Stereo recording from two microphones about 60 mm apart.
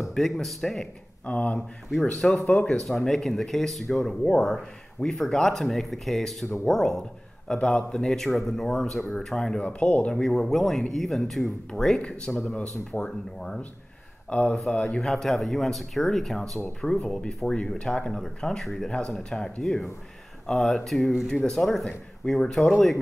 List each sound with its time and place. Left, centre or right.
0.1 s speech: centre
1.2 s speech: left
2.1 s speech: centre
2.8 s speech: centre
9.7 s speech: left
10.1 s speech: centre
12.5 s speech: left
14.3 s speech: left
15.1 s speech: centre